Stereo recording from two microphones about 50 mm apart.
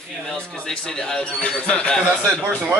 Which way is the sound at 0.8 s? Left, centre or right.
Centre.